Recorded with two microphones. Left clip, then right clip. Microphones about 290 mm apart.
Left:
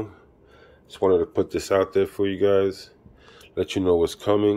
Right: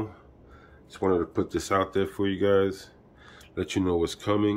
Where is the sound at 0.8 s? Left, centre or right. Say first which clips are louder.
Left 6 dB; centre.